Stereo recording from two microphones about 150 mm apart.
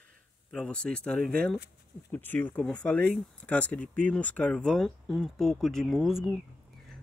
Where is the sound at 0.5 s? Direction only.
5° left (ahead or behind).